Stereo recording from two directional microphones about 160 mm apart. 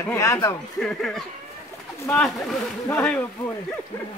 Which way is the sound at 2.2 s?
Centre (ahead or behind).